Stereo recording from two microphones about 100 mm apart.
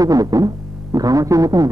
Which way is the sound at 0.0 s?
40° right (ahead or behind).